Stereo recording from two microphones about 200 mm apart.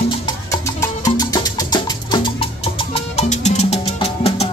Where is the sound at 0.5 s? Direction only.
15° left (ahead or behind).